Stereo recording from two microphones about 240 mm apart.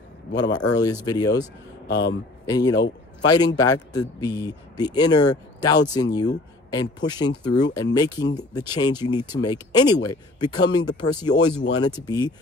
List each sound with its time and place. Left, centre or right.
0.4 s speech: centre
1.9 s a man's voice: left
2.4 s speech: centre